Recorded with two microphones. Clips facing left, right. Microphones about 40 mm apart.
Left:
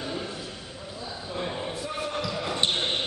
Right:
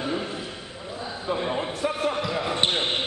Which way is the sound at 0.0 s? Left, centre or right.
Right.